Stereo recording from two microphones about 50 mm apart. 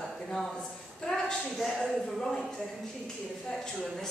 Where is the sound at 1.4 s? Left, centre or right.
Centre.